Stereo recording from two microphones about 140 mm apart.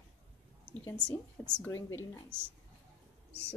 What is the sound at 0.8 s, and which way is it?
Speech, 20° left (ahead or behind).